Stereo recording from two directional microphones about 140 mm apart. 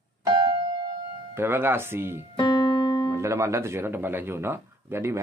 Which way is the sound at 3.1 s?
20° right (ahead or behind).